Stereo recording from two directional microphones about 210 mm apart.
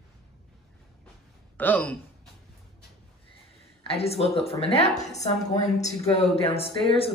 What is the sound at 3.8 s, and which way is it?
A woman's voice, 30° left (ahead or behind).